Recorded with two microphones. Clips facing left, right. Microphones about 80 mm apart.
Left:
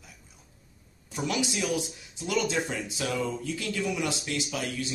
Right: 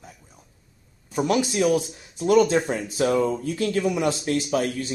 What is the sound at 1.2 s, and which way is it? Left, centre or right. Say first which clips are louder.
A man's voice: right 8 dB; right.